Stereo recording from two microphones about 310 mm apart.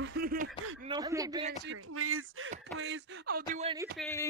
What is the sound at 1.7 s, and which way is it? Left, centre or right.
Speech, right.